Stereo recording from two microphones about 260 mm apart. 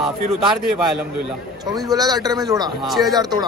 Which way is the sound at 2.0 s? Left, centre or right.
Centre.